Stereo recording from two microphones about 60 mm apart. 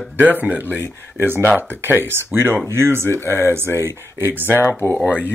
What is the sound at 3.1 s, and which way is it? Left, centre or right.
Speech, left.